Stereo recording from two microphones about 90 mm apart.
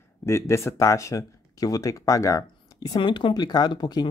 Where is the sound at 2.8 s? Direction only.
55° left (ahead or behind).